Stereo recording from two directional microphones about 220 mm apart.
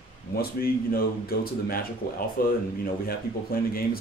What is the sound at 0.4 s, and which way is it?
A man's voice, 45° left (ahead or behind).